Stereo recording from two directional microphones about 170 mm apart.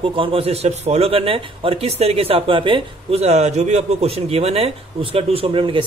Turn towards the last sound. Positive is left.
turn(degrees=-30)  # may be behind; listen again after turning